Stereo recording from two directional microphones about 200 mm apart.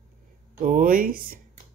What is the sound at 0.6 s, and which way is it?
Speech, 45° right (ahead or behind).